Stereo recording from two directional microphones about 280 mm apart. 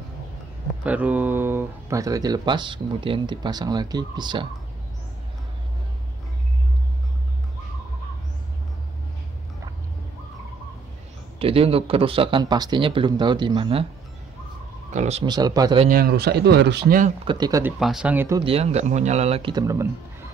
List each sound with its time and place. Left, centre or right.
0.8 s speech: centre
11.3 s speech: centre
14.9 s speech: right
15.9 s speech: right
17.2 s speech: centre
17.7 s speech: centre